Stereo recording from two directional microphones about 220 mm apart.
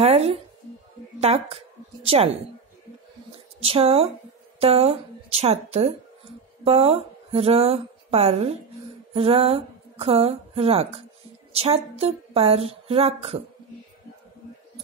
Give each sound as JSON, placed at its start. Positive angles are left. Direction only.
{"t": 0.0, "sound": "music", "side_deg": -30}
{"t": 1.2, "sound": "a woman's voice", "side_deg": -25}
{"t": 3.3, "sound": "a sound", "side_deg": -25}
{"t": 4.6, "sound": "a woman's voice", "side_deg": -25}